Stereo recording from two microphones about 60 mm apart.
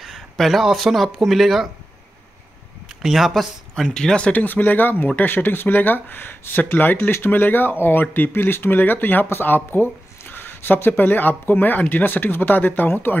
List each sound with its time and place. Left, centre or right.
0.0 s speech: centre
3.0 s speech: centre
3.9 s speech: centre
4.3 s speech: left